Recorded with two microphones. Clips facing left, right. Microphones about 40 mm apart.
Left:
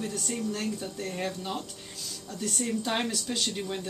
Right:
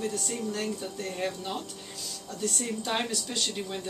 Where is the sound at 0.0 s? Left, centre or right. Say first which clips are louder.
Even; centre.